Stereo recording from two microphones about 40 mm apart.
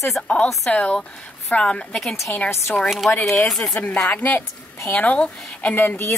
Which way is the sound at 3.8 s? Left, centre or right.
Left.